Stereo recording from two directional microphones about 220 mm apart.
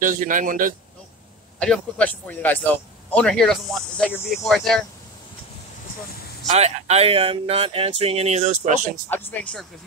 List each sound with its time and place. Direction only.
0.0 s speech: 35° right (ahead or behind)
1.6 s a man's voice: 5° left (ahead or behind)
6.4 s speech: 30° right (ahead or behind)
9.1 s a man's voice: 5° left (ahead or behind)